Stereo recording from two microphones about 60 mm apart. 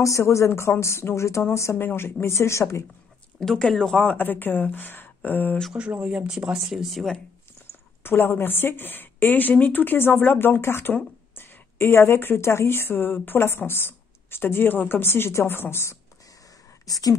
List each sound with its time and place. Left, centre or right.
0.0 s speech: left
1.8 s speech: left
3.3 s speech: centre
4.2 s speech: left
5.8 s speech: centre
8.0 s speech: left
16.8 s speech: left